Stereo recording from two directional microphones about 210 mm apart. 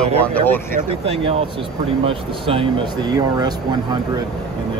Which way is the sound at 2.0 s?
25° right (ahead or behind).